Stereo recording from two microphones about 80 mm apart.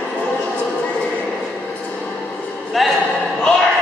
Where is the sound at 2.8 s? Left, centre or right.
Centre.